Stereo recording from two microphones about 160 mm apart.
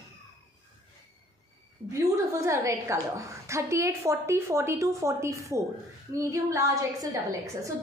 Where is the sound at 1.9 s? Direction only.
20° right (ahead or behind).